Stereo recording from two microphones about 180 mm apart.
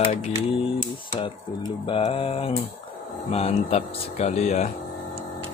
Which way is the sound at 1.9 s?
30° left (ahead or behind).